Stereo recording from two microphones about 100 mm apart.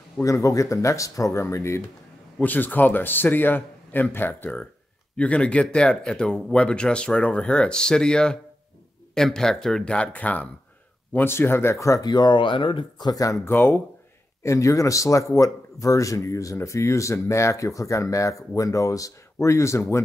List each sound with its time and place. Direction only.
0.2 s a man's voice: 35° left (ahead or behind); by 12.8 s 60° left (ahead or behind)
13.0 s speech: 35° left (ahead or behind)
13.5 s a man's voice: 20° left (ahead or behind)